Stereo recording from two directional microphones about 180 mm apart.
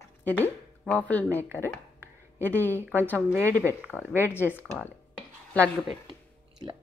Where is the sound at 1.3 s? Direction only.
15° right (ahead or behind).